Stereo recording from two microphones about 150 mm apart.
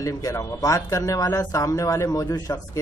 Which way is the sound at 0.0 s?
25° left (ahead or behind).